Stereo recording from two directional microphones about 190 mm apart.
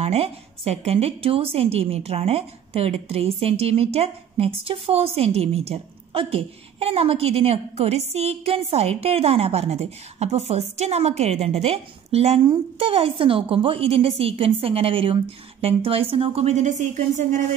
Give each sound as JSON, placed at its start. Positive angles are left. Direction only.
{"t": 0.0, "sound": "a woman's voice", "side_deg": -30}